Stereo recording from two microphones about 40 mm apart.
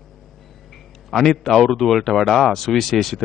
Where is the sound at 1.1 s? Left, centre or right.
Centre.